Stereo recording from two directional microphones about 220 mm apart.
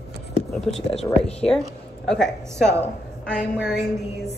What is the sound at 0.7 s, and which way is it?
Speech, centre (ahead or behind).